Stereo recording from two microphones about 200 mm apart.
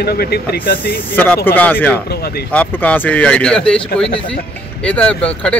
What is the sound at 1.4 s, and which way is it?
Speech, 10° left (ahead or behind).